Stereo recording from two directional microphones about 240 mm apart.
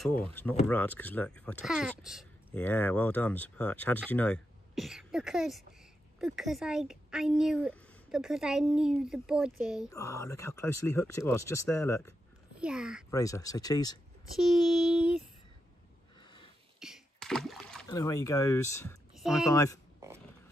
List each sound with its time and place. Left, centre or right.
0.0 s speech: centre
9.8 s speech: centre
12.5 s speech: centre
13.1 s speech: centre
14.3 s speech: centre
16.2 s a sound: centre
16.8 s a sound: centre
17.8 s speech: centre
19.1 s speech: centre
19.5 s speech: centre